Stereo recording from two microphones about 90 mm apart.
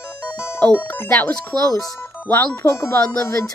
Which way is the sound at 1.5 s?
50° right (ahead or behind).